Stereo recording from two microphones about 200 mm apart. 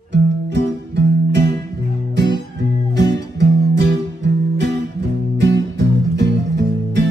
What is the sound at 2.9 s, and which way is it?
Music, 60° right (ahead or behind).